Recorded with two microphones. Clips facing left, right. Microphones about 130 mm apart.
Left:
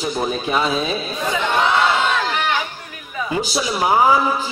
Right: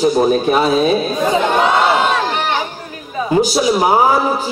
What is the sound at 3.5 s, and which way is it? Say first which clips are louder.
Mantra: right 1 dB; 35° right (ahead or behind).